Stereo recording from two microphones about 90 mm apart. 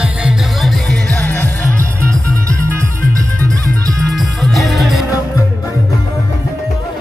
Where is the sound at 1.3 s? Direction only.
20° left (ahead or behind).